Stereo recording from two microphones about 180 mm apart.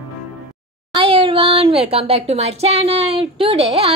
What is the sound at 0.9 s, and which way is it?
Speech, 30° right (ahead or behind).